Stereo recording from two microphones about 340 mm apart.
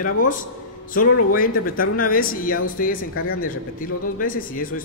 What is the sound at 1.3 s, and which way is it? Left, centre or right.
Speech, left.